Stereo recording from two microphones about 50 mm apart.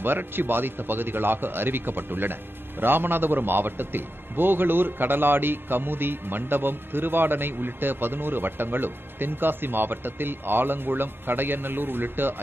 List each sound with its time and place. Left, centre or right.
0.0 s a man's voice: right